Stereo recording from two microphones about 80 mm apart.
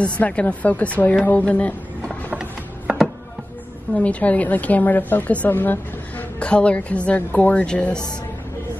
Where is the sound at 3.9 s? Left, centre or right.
Centre.